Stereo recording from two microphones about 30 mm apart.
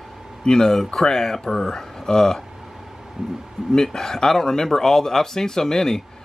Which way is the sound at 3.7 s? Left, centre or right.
Centre.